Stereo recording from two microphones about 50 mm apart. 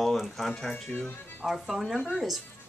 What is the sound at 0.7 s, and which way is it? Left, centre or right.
Speech, left.